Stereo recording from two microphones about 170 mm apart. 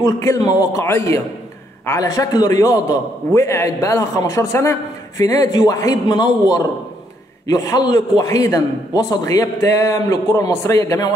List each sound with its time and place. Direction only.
0.0 s a man's voice: 20° left (ahead or behind)